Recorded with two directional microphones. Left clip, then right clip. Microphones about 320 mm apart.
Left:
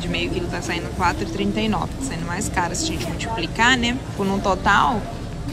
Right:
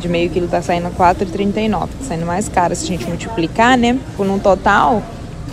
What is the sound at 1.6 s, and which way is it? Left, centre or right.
A woman's voice, centre.